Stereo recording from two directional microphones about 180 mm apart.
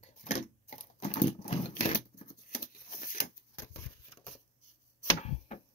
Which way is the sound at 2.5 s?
50° left (ahead or behind).